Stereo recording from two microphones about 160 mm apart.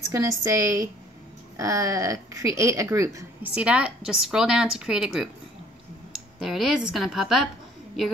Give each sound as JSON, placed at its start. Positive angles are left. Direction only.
{"t": 0.1, "sound": "speech", "side_deg": -20}
{"t": 3.5, "sound": "a woman's voice", "side_deg": -5}
{"t": 6.4, "sound": "a woman's voice", "side_deg": 0}